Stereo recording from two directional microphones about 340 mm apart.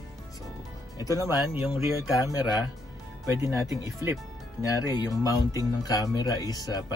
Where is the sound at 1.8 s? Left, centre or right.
Centre.